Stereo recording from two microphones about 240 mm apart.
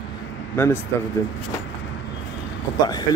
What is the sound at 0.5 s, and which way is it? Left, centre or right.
Speech, centre.